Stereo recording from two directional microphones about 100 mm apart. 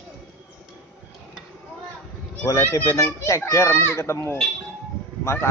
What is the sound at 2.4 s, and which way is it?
A child's voice, 30° left (ahead or behind).